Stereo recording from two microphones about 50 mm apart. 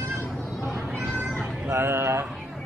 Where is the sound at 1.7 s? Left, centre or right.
Right.